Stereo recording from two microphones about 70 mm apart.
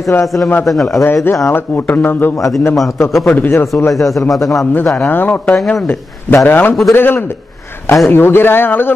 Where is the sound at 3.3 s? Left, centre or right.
Left.